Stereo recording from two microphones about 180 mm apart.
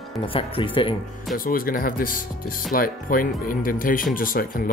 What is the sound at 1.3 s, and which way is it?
Speech, 50° left (ahead or behind).